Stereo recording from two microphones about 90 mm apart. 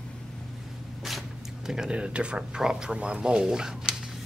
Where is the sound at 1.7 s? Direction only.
10° right (ahead or behind).